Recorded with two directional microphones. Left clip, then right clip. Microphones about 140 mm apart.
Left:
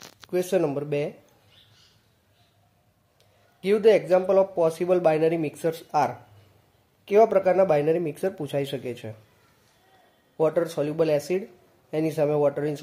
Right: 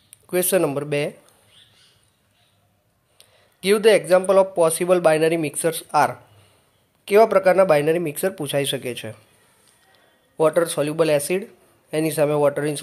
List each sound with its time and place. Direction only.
0.3 s speech: 15° right (ahead or behind)
3.2 s speech: 15° right (ahead or behind)
10.3 s speech: 10° right (ahead or behind)